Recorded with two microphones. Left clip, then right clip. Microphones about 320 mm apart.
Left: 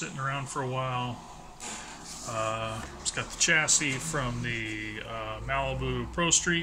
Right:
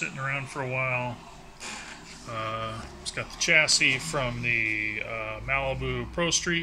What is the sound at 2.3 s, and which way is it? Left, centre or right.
Speech, centre.